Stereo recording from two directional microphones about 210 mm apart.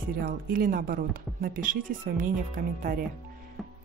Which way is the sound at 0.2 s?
40° right (ahead or behind).